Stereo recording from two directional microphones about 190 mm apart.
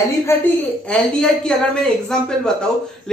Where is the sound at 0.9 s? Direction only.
5° left (ahead or behind).